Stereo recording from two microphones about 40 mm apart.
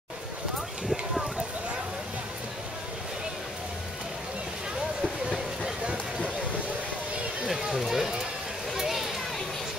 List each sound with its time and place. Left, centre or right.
5.6 s run: right
7.4 s run: centre
8.7 s children playing: centre